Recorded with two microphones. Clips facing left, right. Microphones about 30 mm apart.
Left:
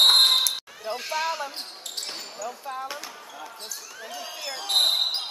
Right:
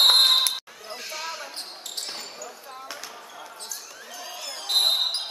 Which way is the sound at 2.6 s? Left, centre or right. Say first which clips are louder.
Left 6 dB; centre.